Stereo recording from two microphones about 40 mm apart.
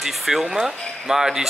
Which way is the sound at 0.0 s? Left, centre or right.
Centre.